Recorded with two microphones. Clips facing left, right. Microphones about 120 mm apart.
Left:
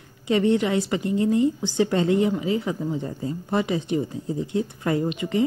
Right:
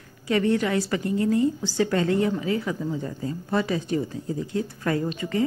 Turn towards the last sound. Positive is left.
turn(degrees=20)  # may be behind; listen again after turning